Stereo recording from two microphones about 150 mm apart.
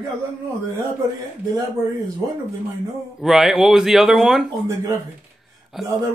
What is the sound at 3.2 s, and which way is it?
Speech, centre (ahead or behind).